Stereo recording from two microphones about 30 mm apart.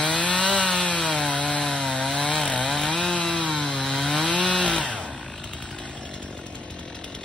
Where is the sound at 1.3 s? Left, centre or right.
Left.